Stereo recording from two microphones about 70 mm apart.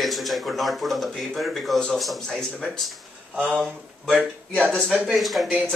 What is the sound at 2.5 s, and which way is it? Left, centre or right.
Speech, centre.